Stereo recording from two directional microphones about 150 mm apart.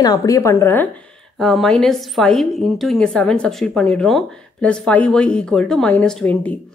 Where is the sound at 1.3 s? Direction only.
Centre (ahead or behind).